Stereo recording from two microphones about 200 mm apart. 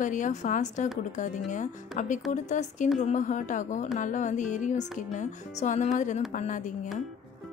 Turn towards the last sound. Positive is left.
turn(degrees=40)  # may be behind; listen again after turning